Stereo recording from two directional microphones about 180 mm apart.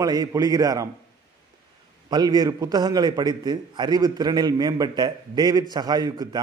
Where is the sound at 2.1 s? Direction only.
20° right (ahead or behind).